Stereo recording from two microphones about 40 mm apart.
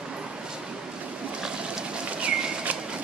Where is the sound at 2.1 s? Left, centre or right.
Right.